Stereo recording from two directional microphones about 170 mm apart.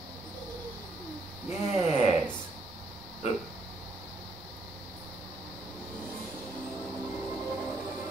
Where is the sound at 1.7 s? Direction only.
35° right (ahead or behind).